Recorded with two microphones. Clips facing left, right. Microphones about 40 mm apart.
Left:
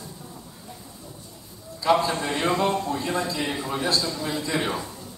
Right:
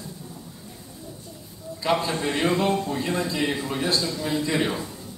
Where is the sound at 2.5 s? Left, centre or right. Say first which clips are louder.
Even; centre.